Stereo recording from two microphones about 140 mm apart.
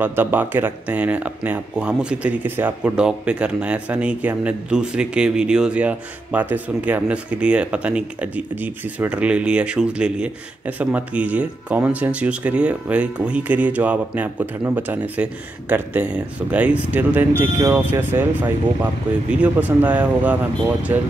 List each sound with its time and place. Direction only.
0.0 s speech: 15° right (ahead or behind)
19.4 s speech: 10° right (ahead or behind)